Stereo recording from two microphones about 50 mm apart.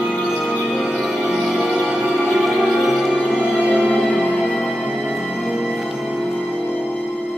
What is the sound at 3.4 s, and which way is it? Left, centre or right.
Music, centre.